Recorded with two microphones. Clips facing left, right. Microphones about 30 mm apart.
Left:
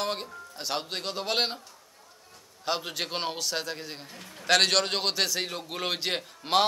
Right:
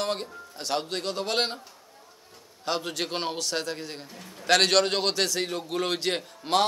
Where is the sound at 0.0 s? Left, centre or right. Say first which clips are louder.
Right 2 dB; centre.